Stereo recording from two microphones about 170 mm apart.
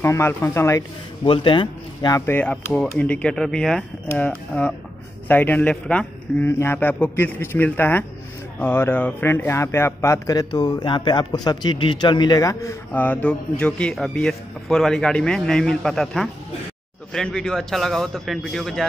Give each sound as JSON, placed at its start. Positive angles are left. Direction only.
{"t": 0.0, "sound": "a man's voice", "side_deg": 15}
{"t": 1.2, "sound": "a man's voice", "side_deg": 30}
{"t": 12.9, "sound": "a man's voice", "side_deg": 10}